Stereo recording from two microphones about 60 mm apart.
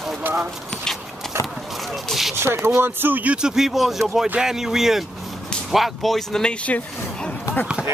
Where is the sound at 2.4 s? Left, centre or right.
Right.